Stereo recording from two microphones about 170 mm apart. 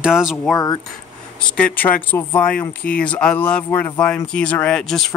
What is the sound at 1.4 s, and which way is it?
Speech, 5° left (ahead or behind).